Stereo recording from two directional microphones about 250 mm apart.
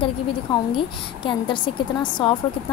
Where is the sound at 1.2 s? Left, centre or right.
Centre.